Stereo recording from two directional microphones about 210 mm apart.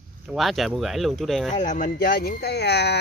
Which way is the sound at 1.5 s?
35° left (ahead or behind).